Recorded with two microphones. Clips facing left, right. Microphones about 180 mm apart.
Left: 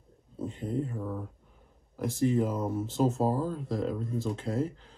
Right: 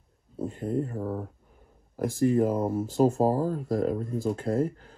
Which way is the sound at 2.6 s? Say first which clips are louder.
Right 4 dB; 5° right (ahead or behind).